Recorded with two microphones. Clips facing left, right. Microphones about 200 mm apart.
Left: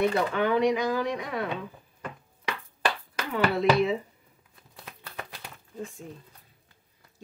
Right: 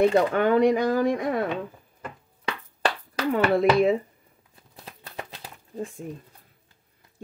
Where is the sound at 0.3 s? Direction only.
50° right (ahead or behind).